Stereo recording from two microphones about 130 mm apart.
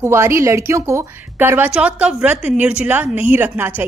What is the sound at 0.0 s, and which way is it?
A woman's voice, 20° right (ahead or behind).